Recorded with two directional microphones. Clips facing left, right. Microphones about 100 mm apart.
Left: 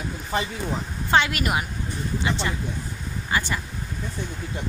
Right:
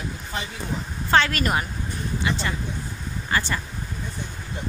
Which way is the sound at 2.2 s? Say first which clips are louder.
Even; 25° left (ahead or behind).